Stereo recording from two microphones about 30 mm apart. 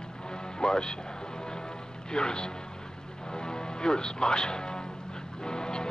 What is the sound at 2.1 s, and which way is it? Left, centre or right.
Speech, left.